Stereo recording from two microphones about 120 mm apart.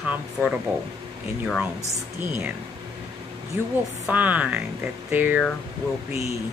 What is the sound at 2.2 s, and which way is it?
Speech, 10° right (ahead or behind).